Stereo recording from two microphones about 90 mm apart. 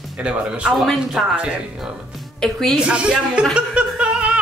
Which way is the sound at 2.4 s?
5° left (ahead or behind).